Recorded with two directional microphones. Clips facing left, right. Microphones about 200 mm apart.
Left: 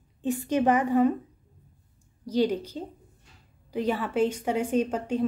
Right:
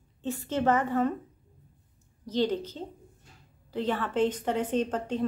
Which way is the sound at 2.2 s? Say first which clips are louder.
Left 3 dB; 10° left (ahead or behind).